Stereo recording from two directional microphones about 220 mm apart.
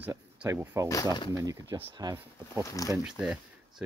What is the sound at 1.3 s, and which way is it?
Speech, 15° right (ahead or behind).